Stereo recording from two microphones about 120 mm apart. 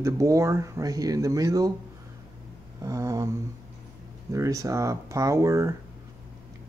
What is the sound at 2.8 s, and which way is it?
Speech, 30° right (ahead or behind).